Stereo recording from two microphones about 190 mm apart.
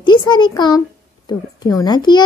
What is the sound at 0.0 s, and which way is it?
A child's voice, 25° left (ahead or behind).